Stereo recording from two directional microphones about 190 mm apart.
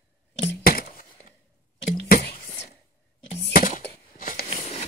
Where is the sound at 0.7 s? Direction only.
50° left (ahead or behind).